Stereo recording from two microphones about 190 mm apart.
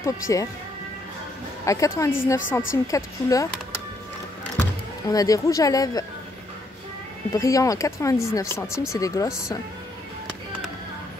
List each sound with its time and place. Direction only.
0.0 s speech: 15° left (ahead or behind)
1.7 s speech: 15° left (ahead or behind)
4.6 s speech: 20° left (ahead or behind)
7.3 s speech: 15° left (ahead or behind)